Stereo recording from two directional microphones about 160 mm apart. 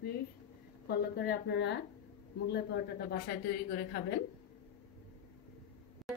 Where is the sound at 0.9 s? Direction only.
85° left.